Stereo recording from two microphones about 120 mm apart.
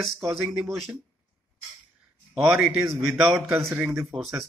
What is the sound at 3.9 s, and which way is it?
Speech, centre (ahead or behind).